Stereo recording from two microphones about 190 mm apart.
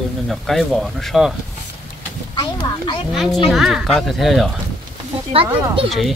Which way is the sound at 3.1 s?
Centre (ahead or behind).